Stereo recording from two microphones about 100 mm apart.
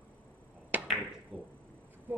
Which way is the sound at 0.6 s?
15° right (ahead or behind).